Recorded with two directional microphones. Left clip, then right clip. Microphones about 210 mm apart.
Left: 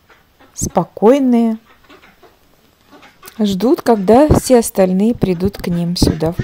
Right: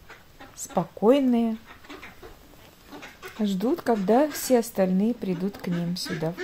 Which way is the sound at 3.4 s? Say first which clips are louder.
Left 12 dB; 50° left (ahead or behind).